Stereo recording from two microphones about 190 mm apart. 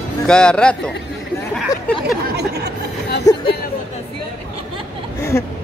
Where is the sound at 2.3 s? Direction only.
60° right (ahead or behind).